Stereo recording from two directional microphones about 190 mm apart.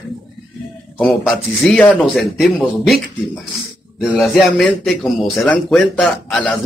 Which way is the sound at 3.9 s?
Centre (ahead or behind).